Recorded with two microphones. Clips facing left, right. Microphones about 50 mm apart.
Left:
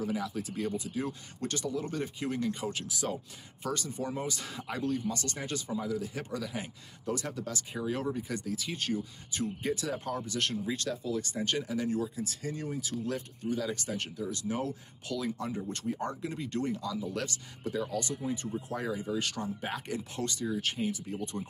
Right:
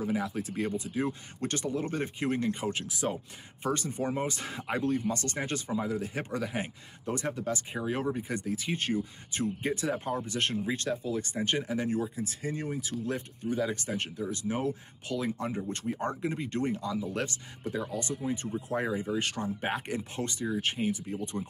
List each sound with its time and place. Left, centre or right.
0.0 s speech: right